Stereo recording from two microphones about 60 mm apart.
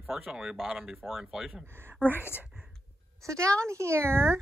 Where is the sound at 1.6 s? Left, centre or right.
Right.